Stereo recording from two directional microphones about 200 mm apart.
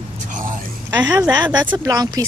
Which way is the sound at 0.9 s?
10° right (ahead or behind).